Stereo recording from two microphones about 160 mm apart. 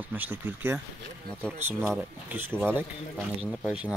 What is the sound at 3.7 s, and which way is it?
Speech, 5° right (ahead or behind).